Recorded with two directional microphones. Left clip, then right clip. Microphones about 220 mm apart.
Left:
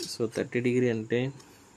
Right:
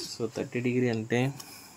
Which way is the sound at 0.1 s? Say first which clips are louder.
Left 4 dB; 20° left (ahead or behind).